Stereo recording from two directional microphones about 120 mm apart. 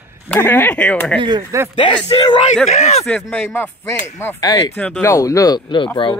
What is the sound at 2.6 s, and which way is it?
Speech, 65° left (ahead or behind).